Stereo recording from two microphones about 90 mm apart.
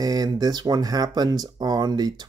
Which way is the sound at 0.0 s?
45° right (ahead or behind).